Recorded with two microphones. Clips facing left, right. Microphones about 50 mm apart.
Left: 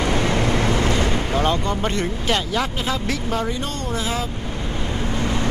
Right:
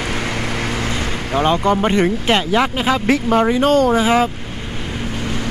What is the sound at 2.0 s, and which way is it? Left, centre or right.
Speech, right.